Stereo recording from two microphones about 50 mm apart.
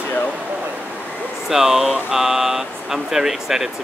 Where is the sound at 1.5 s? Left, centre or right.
Centre.